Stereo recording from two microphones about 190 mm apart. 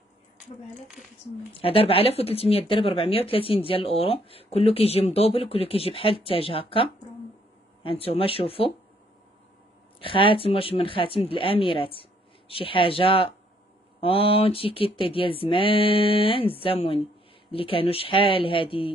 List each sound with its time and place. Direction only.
1.5 s speech: 30° left (ahead or behind)
9.9 s speech: 25° left (ahead or behind)